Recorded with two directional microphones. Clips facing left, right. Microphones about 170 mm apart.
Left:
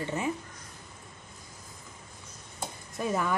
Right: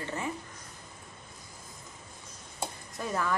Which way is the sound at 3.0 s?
15° left (ahead or behind).